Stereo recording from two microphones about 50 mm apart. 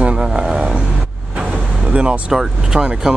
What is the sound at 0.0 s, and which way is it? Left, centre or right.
Vehicle, centre.